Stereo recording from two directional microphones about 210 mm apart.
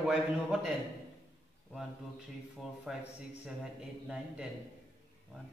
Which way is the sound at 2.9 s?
5° right (ahead or behind).